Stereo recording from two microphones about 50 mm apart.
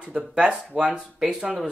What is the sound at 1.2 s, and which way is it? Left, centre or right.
Speech, centre.